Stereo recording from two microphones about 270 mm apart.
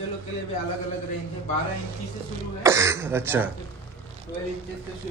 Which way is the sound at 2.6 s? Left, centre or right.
Centre.